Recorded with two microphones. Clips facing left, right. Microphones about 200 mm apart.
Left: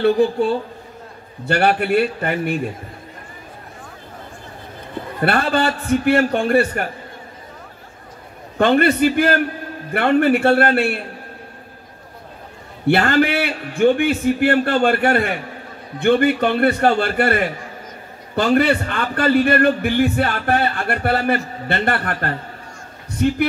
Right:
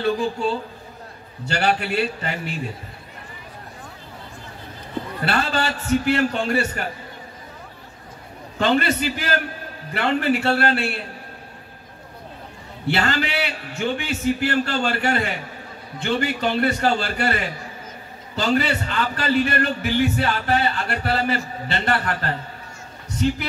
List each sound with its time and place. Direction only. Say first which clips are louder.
0.0 s a man's voice: left 6 dB; 60° left (ahead or behind)
5.2 s a man's voice: left 6 dB; 55° left (ahead or behind)
8.5 s a man's voice: left 6 dB; 55° left (ahead or behind)
12.8 s a man's voice: left 7 dB; 55° left (ahead or behind)